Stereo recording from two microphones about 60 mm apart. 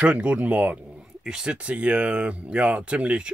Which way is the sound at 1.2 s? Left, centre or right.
Centre.